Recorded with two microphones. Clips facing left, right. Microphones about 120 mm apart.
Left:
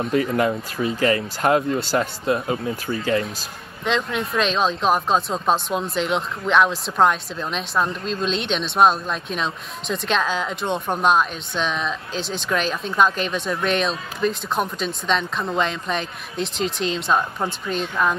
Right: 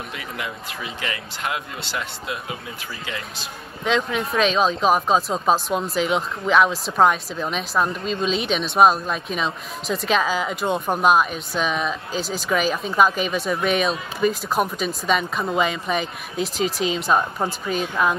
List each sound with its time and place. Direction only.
0.1 s speech: 40° left (ahead or behind)
3.8 s speech: centre (ahead or behind)